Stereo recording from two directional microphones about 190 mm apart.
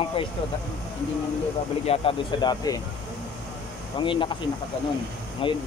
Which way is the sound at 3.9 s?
25° left (ahead or behind).